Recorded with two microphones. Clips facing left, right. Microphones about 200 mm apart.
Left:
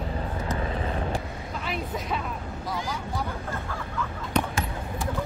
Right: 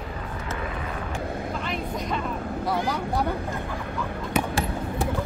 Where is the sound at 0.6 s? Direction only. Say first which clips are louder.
Left 3 dB; 30° left (ahead or behind).